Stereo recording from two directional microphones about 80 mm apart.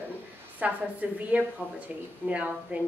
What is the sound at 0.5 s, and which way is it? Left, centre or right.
A woman's voice, centre.